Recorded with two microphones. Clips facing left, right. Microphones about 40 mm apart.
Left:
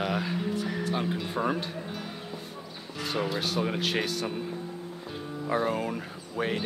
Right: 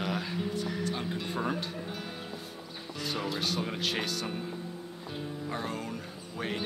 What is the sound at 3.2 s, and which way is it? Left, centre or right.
Speech, centre.